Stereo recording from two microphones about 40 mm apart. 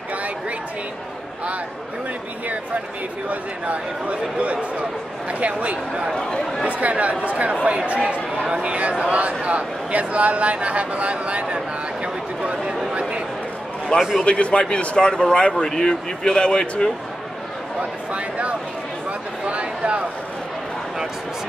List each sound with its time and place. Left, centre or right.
0.1 s a sound: right
2.4 s speech: right
6.1 s speech: left
6.7 s speech: right
8.5 s speech: right
13.9 s speech: left
19.4 s a sound: right